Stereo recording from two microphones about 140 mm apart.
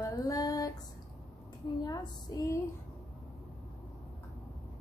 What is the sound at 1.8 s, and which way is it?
Speech, 30° left (ahead or behind).